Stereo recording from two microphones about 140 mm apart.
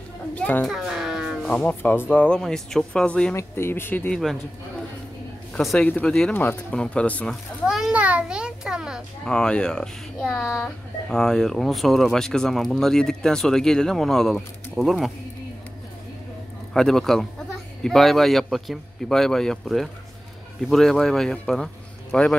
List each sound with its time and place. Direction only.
0.3 s a woman's voice: 10° left (ahead or behind)
0.7 s music: 5° right (ahead or behind)
1.5 s speech: 10° left (ahead or behind)
3.3 s speech: 20° left (ahead or behind)
4.1 s speech: centre (ahead or behind)
5.5 s speech: 5° left (ahead or behind)
7.6 s a child's voice: 5° right (ahead or behind)
9.2 s speech: 5° left (ahead or behind)
16.7 s speech: 5° left (ahead or behind)